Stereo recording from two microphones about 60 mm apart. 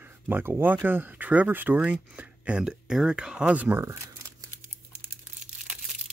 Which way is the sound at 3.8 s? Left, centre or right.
Right.